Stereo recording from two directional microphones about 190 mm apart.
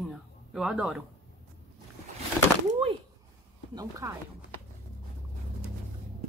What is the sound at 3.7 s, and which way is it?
Speech, 15° right (ahead or behind).